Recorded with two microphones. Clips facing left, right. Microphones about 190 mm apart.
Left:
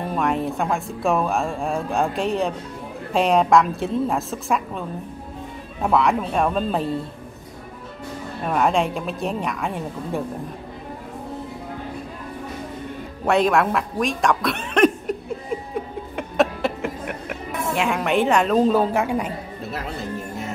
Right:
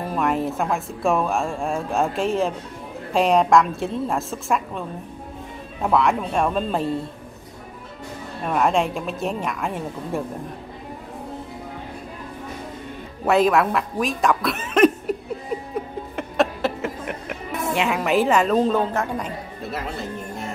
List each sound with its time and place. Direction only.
0.0 s speech: centre (ahead or behind)
8.5 s speech: centre (ahead or behind)
13.2 s speech: centre (ahead or behind)
16.2 s a sound: centre (ahead or behind)
17.5 s speech: centre (ahead or behind)